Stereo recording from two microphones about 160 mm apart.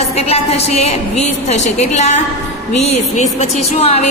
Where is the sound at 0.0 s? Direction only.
40° left (ahead or behind).